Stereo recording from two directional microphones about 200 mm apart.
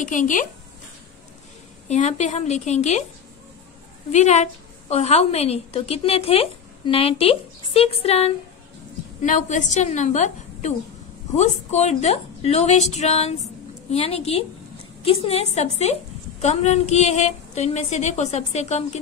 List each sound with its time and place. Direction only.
0.0 s a woman's voice: 40° left (ahead or behind)
1.9 s a woman's voice: 35° left (ahead or behind)
4.1 s a woman's voice: 35° left (ahead or behind)